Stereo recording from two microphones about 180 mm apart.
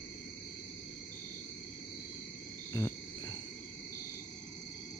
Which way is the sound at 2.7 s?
20° left (ahead or behind).